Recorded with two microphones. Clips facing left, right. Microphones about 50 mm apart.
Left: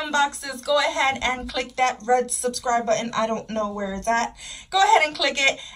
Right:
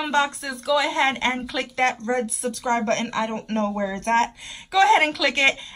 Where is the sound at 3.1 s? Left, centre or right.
Centre.